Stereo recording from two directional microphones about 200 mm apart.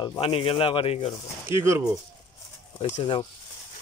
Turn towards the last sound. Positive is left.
turn(degrees=30)  # may be behind; listen again after turning